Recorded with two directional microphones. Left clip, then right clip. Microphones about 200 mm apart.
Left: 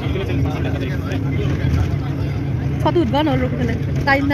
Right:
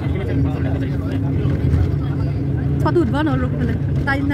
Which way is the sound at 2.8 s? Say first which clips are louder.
Left 2 dB; centre (ahead or behind).